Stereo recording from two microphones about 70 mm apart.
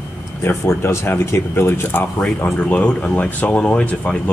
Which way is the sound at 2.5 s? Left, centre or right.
Left.